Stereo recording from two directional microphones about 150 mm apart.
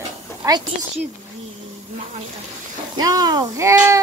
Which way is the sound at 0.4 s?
30° right (ahead or behind).